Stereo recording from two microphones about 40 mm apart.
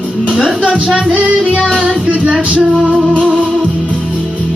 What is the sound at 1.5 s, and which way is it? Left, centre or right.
Music, centre.